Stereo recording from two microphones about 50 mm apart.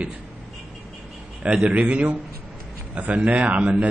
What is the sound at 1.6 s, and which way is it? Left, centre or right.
A man's voice, right.